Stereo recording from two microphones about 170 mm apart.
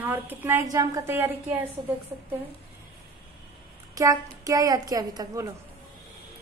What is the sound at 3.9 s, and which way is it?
A woman's voice, 20° right (ahead or behind).